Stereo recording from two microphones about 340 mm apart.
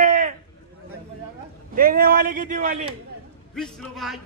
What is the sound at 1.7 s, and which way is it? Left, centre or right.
A man's voice, right.